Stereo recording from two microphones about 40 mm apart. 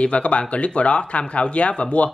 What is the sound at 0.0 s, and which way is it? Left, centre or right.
Speech, left.